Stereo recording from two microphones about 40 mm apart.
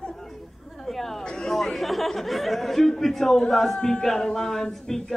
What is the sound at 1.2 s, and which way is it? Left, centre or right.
Chatter, centre.